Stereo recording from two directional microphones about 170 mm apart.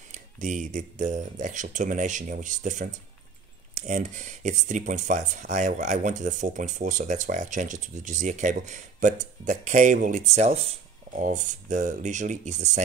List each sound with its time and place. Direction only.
0.1 s speech: 45° right (ahead or behind)
11.1 s speech: 45° right (ahead or behind)